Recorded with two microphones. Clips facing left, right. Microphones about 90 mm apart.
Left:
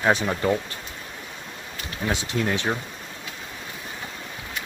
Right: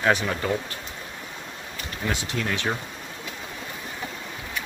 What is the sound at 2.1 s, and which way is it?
Speech, 20° left (ahead or behind).